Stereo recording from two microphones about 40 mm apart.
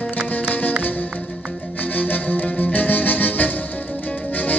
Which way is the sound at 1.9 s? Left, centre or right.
Left.